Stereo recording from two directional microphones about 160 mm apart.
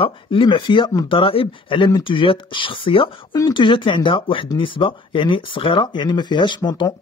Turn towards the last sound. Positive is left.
turn(degrees=25)  # may be behind; listen again after turning